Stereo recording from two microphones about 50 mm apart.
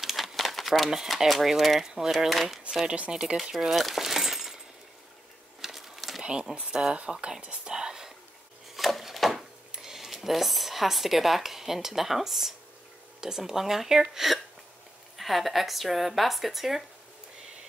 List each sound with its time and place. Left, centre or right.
0.0 s speech: centre
2.6 s speech: centre
3.7 s glass: centre
5.6 s a sound: centre
6.2 s speech: centre
8.7 s wood: centre
9.7 s speech: centre